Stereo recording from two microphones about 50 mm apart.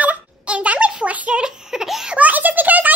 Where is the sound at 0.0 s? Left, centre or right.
Right.